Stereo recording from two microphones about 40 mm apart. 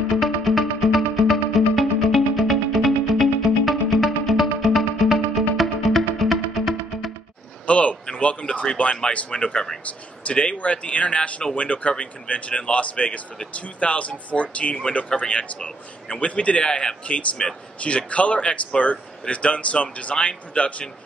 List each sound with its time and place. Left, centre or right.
0.1 s music: centre
7.6 s a sound: left
8.1 s a man's voice: left
10.2 s a man's voice: left